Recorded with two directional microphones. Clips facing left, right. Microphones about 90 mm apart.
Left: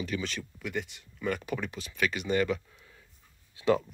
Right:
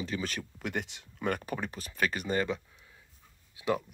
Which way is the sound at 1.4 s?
35° right (ahead or behind).